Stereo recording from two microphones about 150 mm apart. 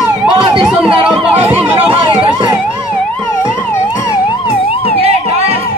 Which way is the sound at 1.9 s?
40° right (ahead or behind).